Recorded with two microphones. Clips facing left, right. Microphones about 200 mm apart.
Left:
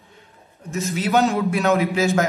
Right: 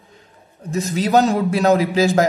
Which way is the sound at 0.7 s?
35° right (ahead or behind).